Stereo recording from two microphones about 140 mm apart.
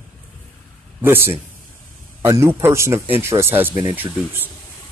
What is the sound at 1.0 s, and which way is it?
Speech, 15° right (ahead or behind).